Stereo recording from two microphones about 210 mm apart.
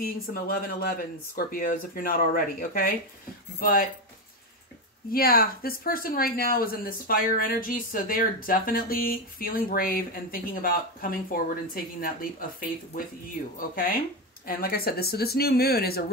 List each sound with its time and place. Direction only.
0.0 s speech: 45° left (ahead or behind)
5.1 s speech: 45° left (ahead or behind)